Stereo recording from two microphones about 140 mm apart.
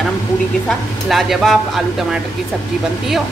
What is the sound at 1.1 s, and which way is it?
Speech, centre (ahead or behind).